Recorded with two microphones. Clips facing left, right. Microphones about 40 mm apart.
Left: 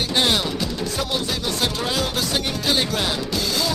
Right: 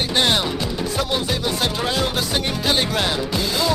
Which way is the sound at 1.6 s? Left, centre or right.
Centre.